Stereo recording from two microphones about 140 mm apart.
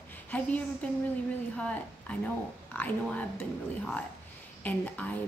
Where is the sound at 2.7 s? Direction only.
15° left (ahead or behind).